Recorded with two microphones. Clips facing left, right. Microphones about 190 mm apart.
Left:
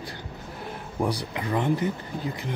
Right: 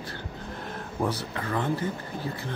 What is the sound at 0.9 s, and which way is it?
Speech, 15° left (ahead or behind).